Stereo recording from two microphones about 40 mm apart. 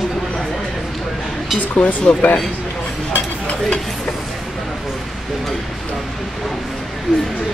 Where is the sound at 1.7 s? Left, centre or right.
Left.